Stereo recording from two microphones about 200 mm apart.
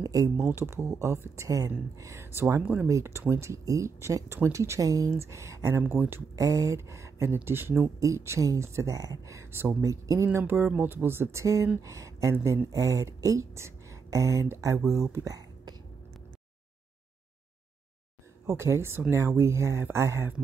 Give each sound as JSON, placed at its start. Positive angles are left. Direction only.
{"t": 0.0, "sound": "speech", "side_deg": -15}
{"t": 18.5, "sound": "speech", "side_deg": -15}